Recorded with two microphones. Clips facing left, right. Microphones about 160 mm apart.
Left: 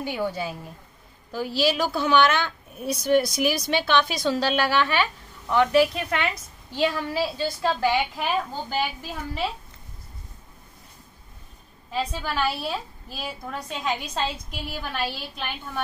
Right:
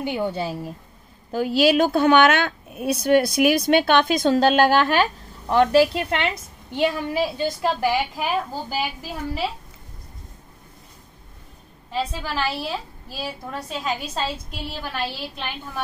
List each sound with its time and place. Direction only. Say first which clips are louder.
0.0 s a woman's voice: right 3 dB; 20° right (ahead or behind)
1.3 s a woman's voice: right 6 dB; 55° right (ahead or behind); by 6.2 s 30° right (ahead or behind)
6.7 s a woman's voice: right 2 dB; 20° right (ahead or behind)
11.9 s a woman's voice: right 1 dB; centre (ahead or behind)